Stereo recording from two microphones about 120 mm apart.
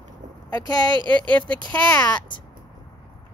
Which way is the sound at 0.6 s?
40° right (ahead or behind).